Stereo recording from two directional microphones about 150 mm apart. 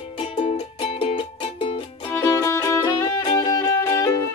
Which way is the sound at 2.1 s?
20° left (ahead or behind).